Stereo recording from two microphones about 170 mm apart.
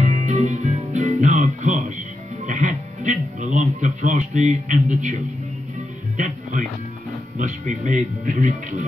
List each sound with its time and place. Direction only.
0.0 s music: 40° right (ahead or behind)
6.1 s music: 45° right (ahead or behind)
7.3 s speech: 45° right (ahead or behind)